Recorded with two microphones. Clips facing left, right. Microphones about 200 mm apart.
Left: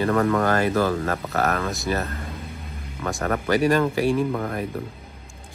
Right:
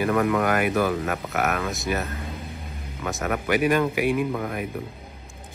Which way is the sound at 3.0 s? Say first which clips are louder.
Left 2 dB; centre (ahead or behind).